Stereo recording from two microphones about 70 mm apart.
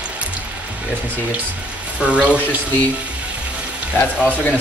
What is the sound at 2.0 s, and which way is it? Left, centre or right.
Speech, centre.